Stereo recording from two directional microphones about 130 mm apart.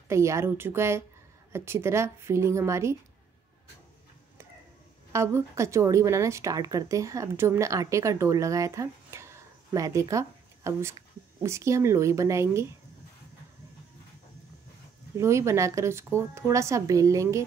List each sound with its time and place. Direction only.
0.1 s speech: 20° right (ahead or behind)
5.1 s speech: 20° right (ahead or behind)
15.1 s speech: 20° right (ahead or behind)